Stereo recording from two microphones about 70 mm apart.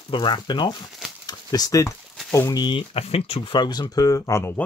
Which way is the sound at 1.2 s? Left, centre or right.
Left.